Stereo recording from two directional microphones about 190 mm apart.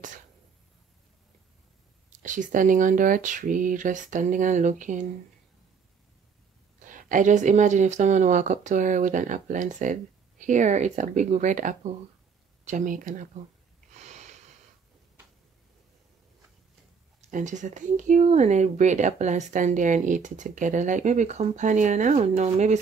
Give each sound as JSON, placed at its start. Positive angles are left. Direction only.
{"t": 2.2, "sound": "speech", "side_deg": -40}
{"t": 6.8, "sound": "speech", "side_deg": -45}
{"t": 13.9, "sound": "snort", "side_deg": -35}
{"t": 17.3, "sound": "speech", "side_deg": -40}